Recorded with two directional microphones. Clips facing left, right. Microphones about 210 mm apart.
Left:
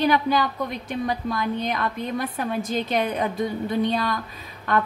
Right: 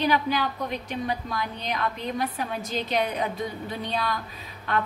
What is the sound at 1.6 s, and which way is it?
A woman's voice, 50° left (ahead or behind).